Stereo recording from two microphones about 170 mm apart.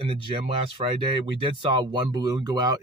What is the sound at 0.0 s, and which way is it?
Speech, 30° right (ahead or behind).